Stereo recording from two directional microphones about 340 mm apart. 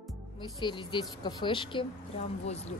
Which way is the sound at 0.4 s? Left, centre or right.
Centre.